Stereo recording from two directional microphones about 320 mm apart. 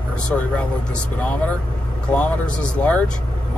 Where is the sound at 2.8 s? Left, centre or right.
Centre.